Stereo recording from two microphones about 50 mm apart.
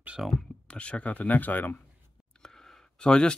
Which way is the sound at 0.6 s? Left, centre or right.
Left.